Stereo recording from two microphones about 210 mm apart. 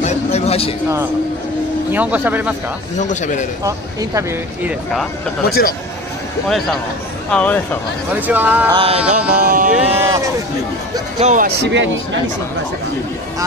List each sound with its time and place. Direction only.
0.0 s a sound: 30° left (ahead or behind)
1.9 s speech: 5° right (ahead or behind)
3.0 s a man's voice: 35° left (ahead or behind)
3.6 s speech: 15° right (ahead or behind)
5.5 s speech: 45° left (ahead or behind)
7.2 s speech: 5° left (ahead or behind)
8.1 s speech: 10° right (ahead or behind)
8.7 s music: 25° right (ahead or behind)
9.0 s a sound: 5° right (ahead or behind)
9.4 s a sound: 40° right (ahead or behind)
9.8 s speech: 15° right (ahead or behind)
11.1 s a sound: 35° right (ahead or behind)
11.4 s speech: 55° right (ahead or behind)